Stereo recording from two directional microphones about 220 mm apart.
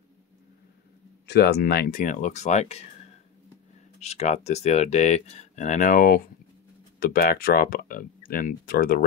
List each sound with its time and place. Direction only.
1.2 s speech: 50° left (ahead or behind); by 2.8 s 30° left (ahead or behind)
4.0 s speech: 30° left (ahead or behind)